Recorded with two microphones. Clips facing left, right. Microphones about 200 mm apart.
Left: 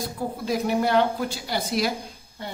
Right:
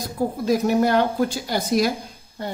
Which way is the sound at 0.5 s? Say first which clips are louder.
Right 4 dB; 45° right (ahead or behind).